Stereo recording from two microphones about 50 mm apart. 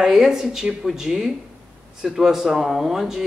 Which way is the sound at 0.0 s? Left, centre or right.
Centre.